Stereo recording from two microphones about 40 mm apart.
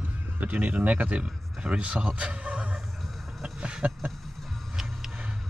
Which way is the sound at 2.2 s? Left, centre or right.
Right.